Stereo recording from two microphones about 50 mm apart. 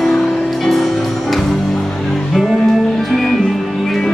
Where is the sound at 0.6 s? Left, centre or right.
Centre.